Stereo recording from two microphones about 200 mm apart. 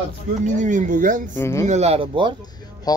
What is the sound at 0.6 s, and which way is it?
Speech, 40° right (ahead or behind).